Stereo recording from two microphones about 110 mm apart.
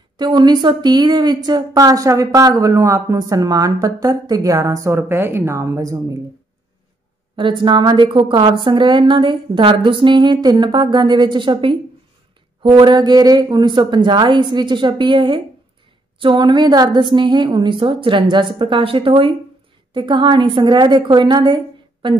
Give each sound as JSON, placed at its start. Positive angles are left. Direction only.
{"t": 0.2, "sound": "speech", "side_deg": -40}
{"t": 7.3, "sound": "speech", "side_deg": -45}
{"t": 12.9, "sound": "speech", "side_deg": -40}